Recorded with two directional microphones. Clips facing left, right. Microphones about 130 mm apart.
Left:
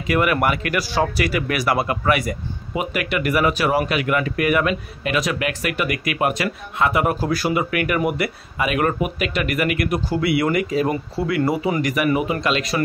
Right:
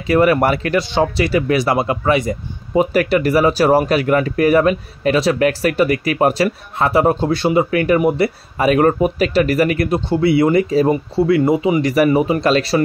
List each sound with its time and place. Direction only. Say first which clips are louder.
0.0 s speech: right 6 dB; 30° right (ahead or behind)
11.9 s speech: right 6 dB; 35° right (ahead or behind)